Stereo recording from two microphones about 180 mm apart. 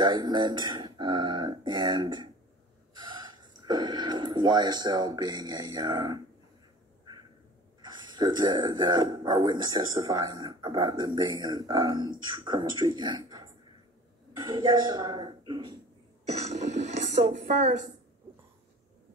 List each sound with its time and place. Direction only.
0.0 s speech: 25° right (ahead or behind)
3.6 s speech: 25° right (ahead or behind)
7.8 s speech: 25° right (ahead or behind)
16.3 s a sound: 35° right (ahead or behind)